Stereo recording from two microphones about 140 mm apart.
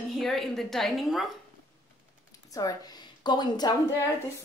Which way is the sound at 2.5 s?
25° left (ahead or behind).